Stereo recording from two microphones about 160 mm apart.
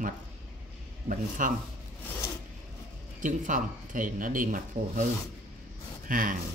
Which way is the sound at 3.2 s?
55° right (ahead or behind).